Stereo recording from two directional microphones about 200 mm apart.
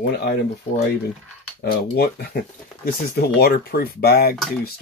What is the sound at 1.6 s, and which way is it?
Speech, 50° left (ahead or behind).